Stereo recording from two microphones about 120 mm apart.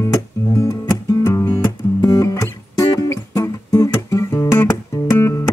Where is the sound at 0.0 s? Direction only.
25° left (ahead or behind).